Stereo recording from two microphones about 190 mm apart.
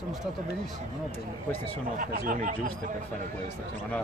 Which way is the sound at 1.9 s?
50° right (ahead or behind).